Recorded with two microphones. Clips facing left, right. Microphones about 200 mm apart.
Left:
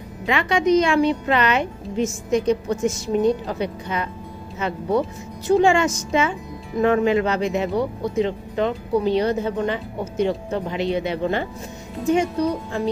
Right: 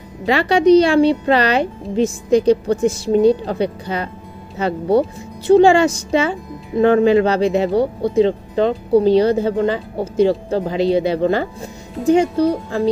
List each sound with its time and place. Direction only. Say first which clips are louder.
0.2 s speech: right 6 dB; 35° right (ahead or behind)